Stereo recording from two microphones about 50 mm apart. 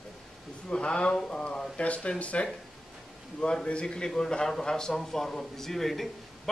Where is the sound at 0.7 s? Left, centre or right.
Left.